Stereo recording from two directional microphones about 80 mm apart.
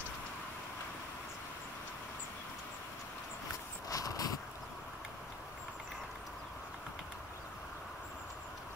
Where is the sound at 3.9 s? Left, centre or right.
Left.